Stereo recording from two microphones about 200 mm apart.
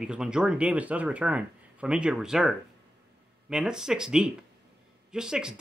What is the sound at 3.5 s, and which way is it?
Speech, 5° right (ahead or behind).